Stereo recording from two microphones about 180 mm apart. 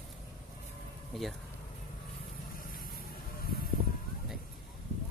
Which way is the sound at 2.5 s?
50° left (ahead or behind).